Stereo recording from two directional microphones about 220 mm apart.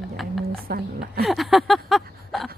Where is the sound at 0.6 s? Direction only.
45° right (ahead or behind).